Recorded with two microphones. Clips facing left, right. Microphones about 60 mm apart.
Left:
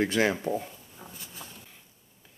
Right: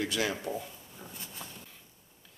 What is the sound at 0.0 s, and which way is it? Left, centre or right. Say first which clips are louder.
Speech: left 6 dB; left.